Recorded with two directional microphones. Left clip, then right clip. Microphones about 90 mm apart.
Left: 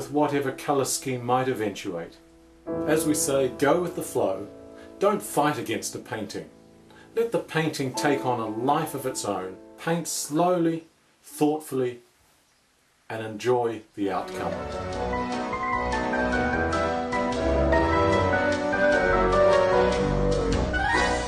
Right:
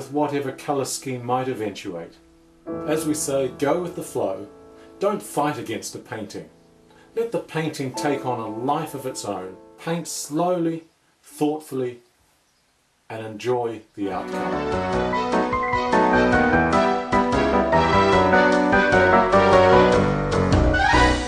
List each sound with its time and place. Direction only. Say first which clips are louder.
0.0 s speech: right 1 dB; 5° right (ahead or behind)
13.1 s music: even; 5° right (ahead or behind)